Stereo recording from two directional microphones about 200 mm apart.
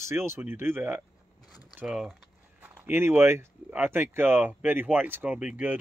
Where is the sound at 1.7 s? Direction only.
5° right (ahead or behind).